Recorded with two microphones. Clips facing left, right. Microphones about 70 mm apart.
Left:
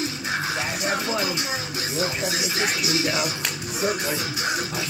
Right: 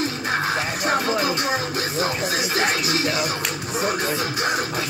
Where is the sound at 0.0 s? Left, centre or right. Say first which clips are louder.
Right 4 dB; right.